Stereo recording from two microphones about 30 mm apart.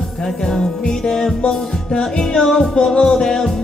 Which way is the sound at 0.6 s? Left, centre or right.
Left.